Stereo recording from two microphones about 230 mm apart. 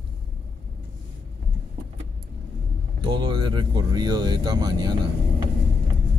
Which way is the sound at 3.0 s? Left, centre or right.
Centre.